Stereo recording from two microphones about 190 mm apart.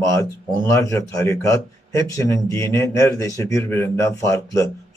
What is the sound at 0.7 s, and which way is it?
A man's voice, 15° left (ahead or behind).